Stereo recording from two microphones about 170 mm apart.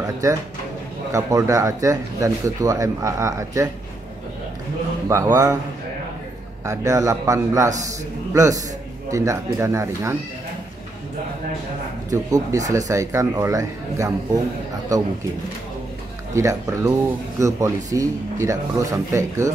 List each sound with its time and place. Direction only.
0.0 s speech: 20° right (ahead or behind)
5.0 s speech: 15° right (ahead or behind)
6.6 s speech: 20° right (ahead or behind)
12.1 s speech: 20° right (ahead or behind)
16.3 s speech: 20° right (ahead or behind)